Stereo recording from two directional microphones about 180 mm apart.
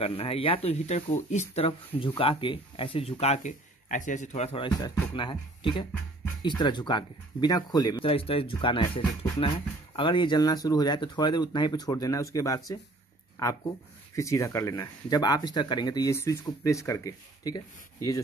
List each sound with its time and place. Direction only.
0.0 s speech: 35° left (ahead or behind)